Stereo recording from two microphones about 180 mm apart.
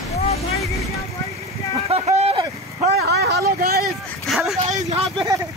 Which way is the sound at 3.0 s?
60° right (ahead or behind).